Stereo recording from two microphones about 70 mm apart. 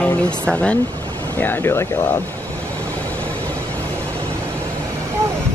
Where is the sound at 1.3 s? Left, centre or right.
Left.